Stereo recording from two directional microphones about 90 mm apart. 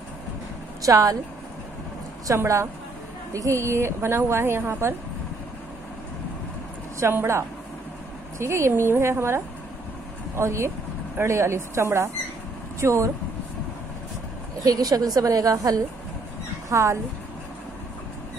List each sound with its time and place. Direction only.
0.8 s a woman's voice: 40° right (ahead or behind)
2.2 s a woman's voice: 35° right (ahead or behind)
7.0 s a woman's voice: 30° right (ahead or behind)
14.6 s a woman's voice: 45° right (ahead or behind)